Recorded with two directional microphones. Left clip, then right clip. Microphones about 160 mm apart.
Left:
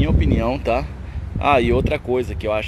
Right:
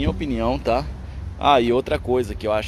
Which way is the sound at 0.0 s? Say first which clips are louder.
Left 2 dB; 15° right (ahead or behind).